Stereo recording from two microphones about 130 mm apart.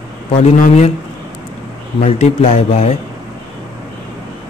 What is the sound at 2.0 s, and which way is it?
Speech, 55° left (ahead or behind).